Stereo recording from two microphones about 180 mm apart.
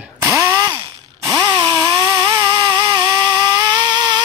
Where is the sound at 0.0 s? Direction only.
15° right (ahead or behind).